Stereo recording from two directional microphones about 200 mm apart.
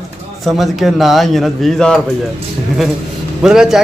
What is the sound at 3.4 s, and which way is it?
Speech, 5° right (ahead or behind).